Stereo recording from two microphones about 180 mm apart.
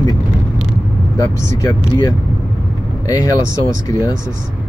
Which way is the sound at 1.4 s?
15° left (ahead or behind).